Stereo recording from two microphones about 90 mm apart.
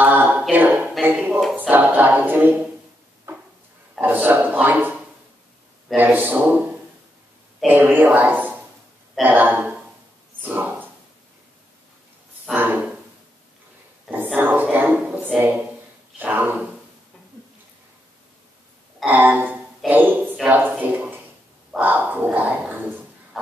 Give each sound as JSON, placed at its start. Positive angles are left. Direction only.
{"t": 0.0, "sound": "a capella", "side_deg": -20}
{"t": 1.1, "sound": "speech", "side_deg": -15}
{"t": 1.5, "sound": "singing", "side_deg": -20}
{"t": 4.0, "sound": "singing", "side_deg": -20}
{"t": 5.9, "sound": "singing", "side_deg": -20}
{"t": 10.4, "sound": "speech", "side_deg": -20}
{"t": 12.5, "sound": "singing", "side_deg": -20}
{"t": 14.1, "sound": "speech", "side_deg": -20}
{"t": 16.2, "sound": "singing", "side_deg": -20}
{"t": 19.0, "sound": "singing", "side_deg": -20}
{"t": 19.9, "sound": "a sound", "side_deg": -20}
{"t": 23.3, "sound": "a sound", "side_deg": -5}